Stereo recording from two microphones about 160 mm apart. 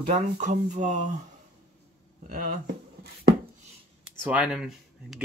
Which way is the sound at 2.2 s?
60° right (ahead or behind).